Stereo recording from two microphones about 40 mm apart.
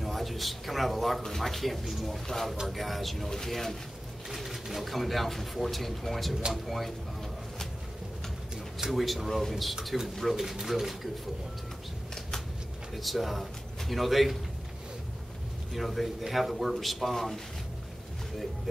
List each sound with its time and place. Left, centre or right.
0.0 s a man's voice: centre
8.9 s speech: centre
12.9 s speech: centre
15.7 s speech: centre